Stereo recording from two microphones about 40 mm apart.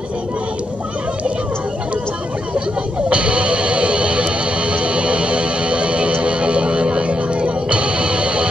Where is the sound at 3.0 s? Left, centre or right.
Right.